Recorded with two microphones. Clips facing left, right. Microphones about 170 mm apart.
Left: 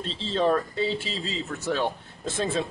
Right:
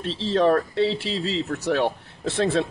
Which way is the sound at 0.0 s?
70° right (ahead or behind).